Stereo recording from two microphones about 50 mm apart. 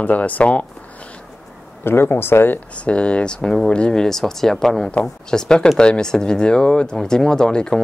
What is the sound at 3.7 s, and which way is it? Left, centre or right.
Speech, left.